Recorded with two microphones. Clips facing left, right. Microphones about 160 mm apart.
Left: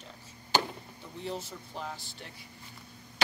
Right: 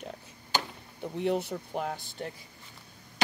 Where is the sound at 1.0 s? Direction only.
65° right (ahead or behind).